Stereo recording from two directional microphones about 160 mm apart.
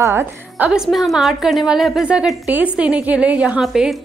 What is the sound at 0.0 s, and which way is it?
A woman's voice, 15° right (ahead or behind).